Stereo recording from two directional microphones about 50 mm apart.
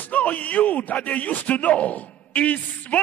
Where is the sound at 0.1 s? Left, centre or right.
Left.